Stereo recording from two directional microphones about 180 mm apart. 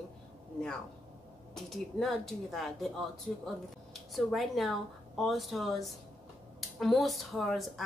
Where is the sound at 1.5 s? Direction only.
Centre (ahead or behind).